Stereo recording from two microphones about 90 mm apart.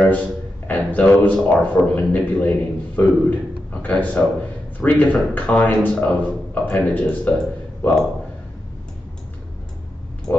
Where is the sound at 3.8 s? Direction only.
15° left (ahead or behind).